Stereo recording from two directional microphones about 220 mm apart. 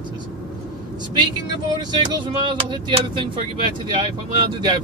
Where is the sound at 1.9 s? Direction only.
20° right (ahead or behind).